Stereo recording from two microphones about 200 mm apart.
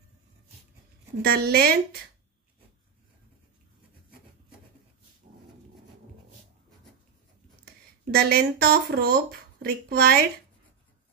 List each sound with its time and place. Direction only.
1.2 s speech: 50° right (ahead or behind)
8.1 s speech: 50° right (ahead or behind)